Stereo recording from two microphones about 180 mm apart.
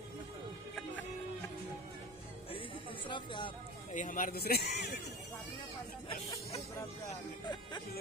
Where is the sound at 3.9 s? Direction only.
45° left (ahead or behind); by 4.9 s 65° left (ahead or behind).